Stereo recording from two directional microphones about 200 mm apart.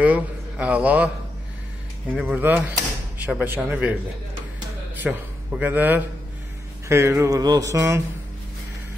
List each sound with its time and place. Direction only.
0.0 s a man's voice: 5° right (ahead or behind)
2.1 s speech: 5° right (ahead or behind)
5.1 s a man's voice: 5° right (ahead or behind)